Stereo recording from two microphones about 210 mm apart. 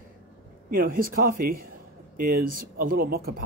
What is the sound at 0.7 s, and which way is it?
Speech, 40° right (ahead or behind).